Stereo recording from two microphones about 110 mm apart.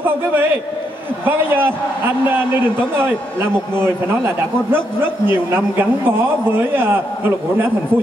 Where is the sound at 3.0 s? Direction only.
20° right (ahead or behind).